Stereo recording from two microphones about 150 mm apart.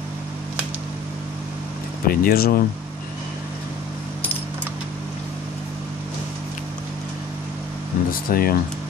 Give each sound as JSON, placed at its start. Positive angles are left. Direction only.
{"t": 2.0, "sound": "speech", "side_deg": 80}
{"t": 8.3, "sound": "speech", "side_deg": 75}